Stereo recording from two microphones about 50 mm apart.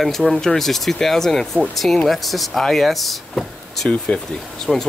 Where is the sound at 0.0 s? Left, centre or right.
Centre.